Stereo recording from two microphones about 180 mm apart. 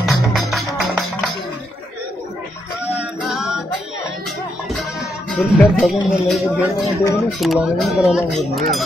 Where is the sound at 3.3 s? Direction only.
Centre (ahead or behind).